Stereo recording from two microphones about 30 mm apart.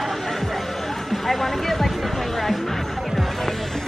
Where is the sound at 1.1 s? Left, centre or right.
Centre.